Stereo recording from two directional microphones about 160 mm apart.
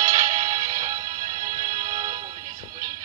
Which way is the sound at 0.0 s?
25° right (ahead or behind).